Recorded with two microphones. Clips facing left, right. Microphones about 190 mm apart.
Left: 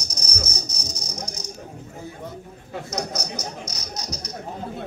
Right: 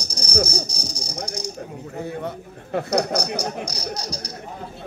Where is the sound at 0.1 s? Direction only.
30° right (ahead or behind).